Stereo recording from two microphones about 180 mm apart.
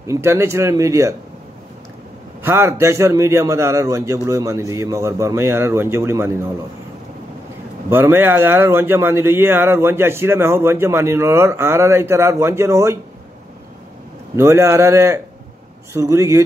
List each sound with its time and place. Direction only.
0.0 s a man's voice: 15° right (ahead or behind)
2.4 s a man's voice: 15° right (ahead or behind)
7.9 s a man's voice: 15° right (ahead or behind)
14.3 s a man's voice: 15° right (ahead or behind)